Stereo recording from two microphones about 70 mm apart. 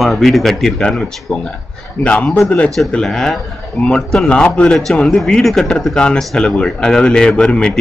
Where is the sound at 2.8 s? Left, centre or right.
Centre.